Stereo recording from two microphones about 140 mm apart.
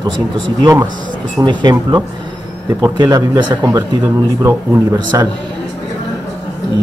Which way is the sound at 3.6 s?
20° right (ahead or behind).